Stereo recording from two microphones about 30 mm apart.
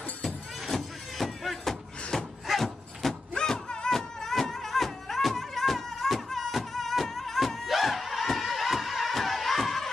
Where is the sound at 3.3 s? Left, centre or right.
Left.